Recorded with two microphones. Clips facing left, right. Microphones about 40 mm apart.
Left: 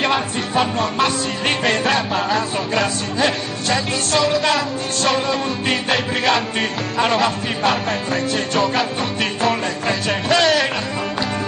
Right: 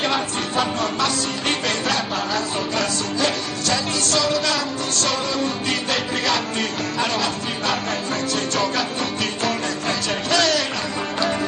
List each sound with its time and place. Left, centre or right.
0.0 s music: left